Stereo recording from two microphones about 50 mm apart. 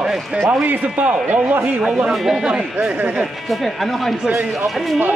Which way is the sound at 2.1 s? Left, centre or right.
Centre.